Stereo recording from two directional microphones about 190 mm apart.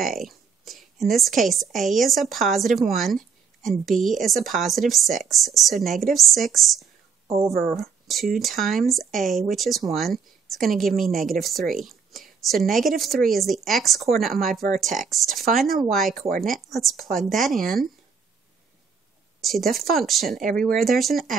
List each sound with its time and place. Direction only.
0.0 s a woman's voice: centre (ahead or behind)
7.2 s speech: 15° right (ahead or behind)
8.4 s a woman's voice: centre (ahead or behind)
14.5 s speech: 45° right (ahead or behind)
15.0 s a woman's voice: centre (ahead or behind)
19.4 s a woman's voice: centre (ahead or behind)
20.3 s speech: 45° right (ahead or behind)
20.6 s a woman's voice: centre (ahead or behind)